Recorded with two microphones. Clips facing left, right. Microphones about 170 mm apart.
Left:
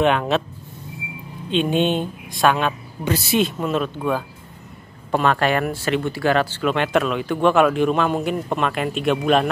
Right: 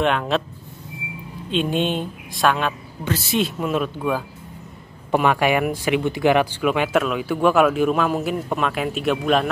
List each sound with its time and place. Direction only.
0.0 s speech: centre (ahead or behind)
1.5 s speech: centre (ahead or behind)